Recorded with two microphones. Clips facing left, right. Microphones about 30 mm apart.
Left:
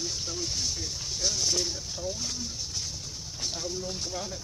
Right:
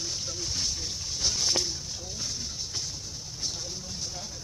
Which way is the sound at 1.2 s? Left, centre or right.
Centre.